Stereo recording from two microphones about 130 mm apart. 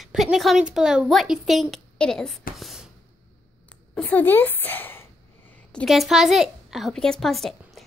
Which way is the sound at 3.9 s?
15° left (ahead or behind).